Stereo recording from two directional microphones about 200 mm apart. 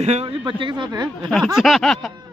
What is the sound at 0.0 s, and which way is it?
Speech, 30° right (ahead or behind).